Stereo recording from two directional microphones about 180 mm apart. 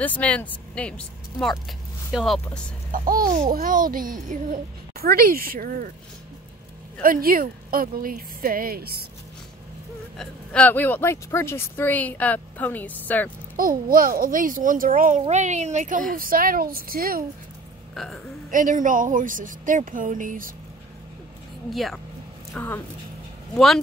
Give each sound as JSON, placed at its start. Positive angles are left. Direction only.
{"t": 0.0, "sound": "a woman's voice", "side_deg": 10}
{"t": 2.9, "sound": "a child's voice", "side_deg": -50}
{"t": 7.0, "sound": "a child's voice", "side_deg": -55}
{"t": 10.1, "sound": "a woman's voice", "side_deg": 5}
{"t": 13.6, "sound": "a child's voice", "side_deg": -50}
{"t": 17.9, "sound": "speech", "side_deg": 0}
{"t": 18.5, "sound": "a child's voice", "side_deg": -45}
{"t": 21.7, "sound": "speech", "side_deg": 0}